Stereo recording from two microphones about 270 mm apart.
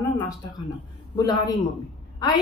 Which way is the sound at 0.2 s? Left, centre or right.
Centre.